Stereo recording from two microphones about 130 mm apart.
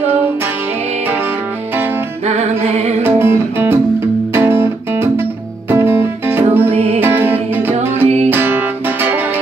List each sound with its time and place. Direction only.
2.2 s music: 60° right (ahead or behind)
3.0 s music: 15° right (ahead or behind)
6.7 s music: 50° right (ahead or behind)
7.0 s music: 15° right (ahead or behind)